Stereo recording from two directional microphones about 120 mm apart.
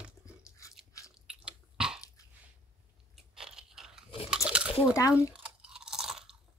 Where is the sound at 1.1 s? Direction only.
10° right (ahead or behind).